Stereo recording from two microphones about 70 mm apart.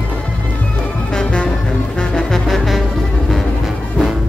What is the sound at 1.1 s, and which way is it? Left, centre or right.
Music, centre.